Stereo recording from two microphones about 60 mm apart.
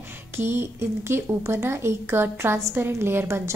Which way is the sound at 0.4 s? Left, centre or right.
Right.